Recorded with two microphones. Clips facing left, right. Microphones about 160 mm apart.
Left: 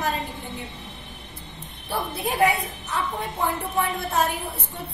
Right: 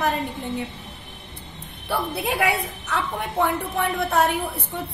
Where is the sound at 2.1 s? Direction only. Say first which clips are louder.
Left 3 dB; 70° right (ahead or behind).